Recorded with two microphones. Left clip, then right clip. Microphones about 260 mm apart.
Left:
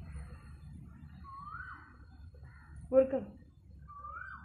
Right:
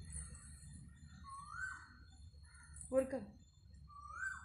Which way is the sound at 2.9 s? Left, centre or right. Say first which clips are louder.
Left 10 dB; right.